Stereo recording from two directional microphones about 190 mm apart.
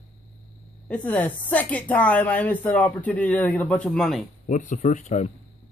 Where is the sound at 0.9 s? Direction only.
5° left (ahead or behind).